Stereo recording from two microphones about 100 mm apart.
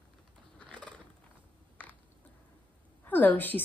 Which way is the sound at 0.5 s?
10° left (ahead or behind).